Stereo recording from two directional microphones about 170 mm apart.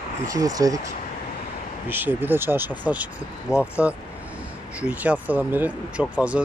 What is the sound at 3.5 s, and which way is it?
Speech, 15° left (ahead or behind).